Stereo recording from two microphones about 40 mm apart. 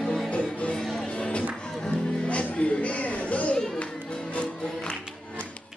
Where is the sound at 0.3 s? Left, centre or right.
Left.